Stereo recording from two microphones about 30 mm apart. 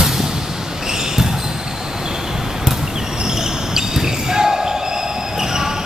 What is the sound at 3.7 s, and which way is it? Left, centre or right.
Basketball bounce, centre.